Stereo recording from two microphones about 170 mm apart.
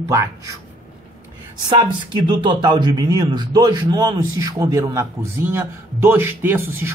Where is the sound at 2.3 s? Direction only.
25° right (ahead or behind).